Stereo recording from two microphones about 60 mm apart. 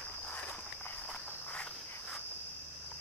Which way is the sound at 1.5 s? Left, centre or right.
Left.